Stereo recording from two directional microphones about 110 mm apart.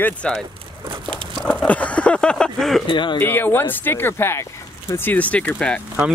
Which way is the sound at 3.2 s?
20° left (ahead or behind).